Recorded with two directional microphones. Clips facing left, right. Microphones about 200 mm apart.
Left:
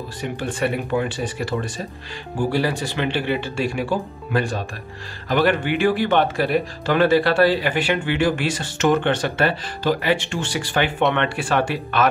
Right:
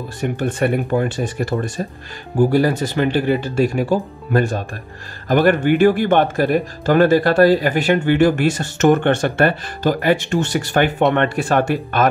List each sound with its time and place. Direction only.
0.2 s speech: 45° right (ahead or behind)